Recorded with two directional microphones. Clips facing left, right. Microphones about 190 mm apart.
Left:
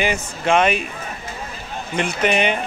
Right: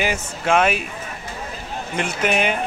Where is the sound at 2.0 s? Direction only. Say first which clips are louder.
Left 2 dB; 5° right (ahead or behind).